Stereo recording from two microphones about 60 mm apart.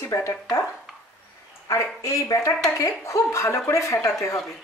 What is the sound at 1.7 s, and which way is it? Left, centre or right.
Speech, left.